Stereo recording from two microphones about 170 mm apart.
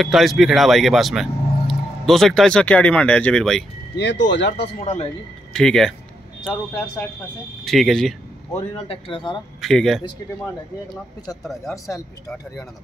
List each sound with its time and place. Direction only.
0.0 s speech: centre (ahead or behind)
3.9 s speech: 90° left
4.7 s speech: 40° left (ahead or behind)
5.5 s speech: 5° left (ahead or behind)
8.5 s speech: 35° left (ahead or behind)
9.6 s speech: centre (ahead or behind)
11.7 s speech: 20° left (ahead or behind)